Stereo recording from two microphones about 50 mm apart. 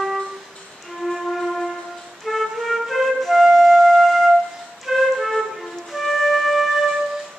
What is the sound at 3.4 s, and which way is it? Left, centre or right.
Music, centre.